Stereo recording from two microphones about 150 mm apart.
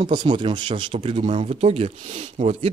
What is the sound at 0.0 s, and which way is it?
Speech, 30° right (ahead or behind).